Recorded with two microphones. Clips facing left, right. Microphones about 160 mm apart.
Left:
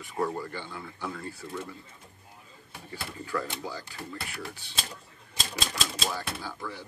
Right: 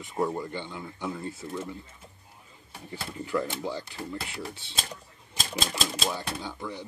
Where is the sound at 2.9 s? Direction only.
20° right (ahead or behind).